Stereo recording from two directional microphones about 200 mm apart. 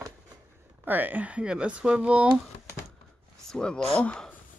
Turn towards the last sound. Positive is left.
turn(degrees=5)  # may be behind; listen again after turning